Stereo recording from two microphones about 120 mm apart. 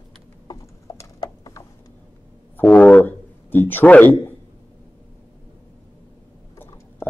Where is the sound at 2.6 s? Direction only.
10° left (ahead or behind).